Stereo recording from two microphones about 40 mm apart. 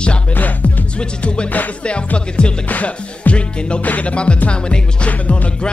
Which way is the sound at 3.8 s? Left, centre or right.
Left.